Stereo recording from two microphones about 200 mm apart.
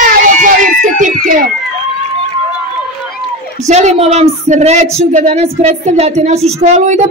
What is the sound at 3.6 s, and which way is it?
A woman's voice, 35° right (ahead or behind).